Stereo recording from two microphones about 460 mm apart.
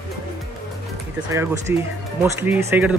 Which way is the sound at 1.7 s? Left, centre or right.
Centre.